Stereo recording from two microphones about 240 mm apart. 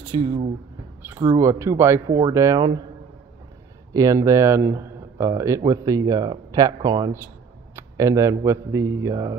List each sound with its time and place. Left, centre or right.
0.1 s speech: centre
3.9 s speech: centre